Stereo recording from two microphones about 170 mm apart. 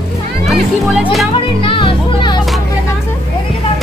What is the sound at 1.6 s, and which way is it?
Music, 30° left (ahead or behind).